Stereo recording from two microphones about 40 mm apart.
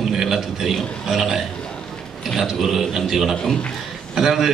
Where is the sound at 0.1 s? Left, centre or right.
Centre.